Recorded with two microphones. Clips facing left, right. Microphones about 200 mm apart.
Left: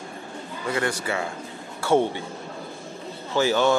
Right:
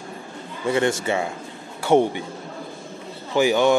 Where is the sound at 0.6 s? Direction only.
25° right (ahead or behind).